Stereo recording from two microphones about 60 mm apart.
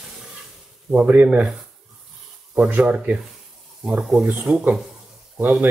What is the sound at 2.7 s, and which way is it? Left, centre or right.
Speech, right.